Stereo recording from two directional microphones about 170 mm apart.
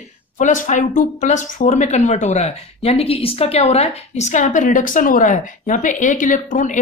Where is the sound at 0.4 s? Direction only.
45° left (ahead or behind).